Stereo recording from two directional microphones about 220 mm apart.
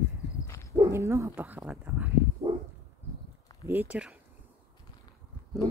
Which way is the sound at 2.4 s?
15° right (ahead or behind).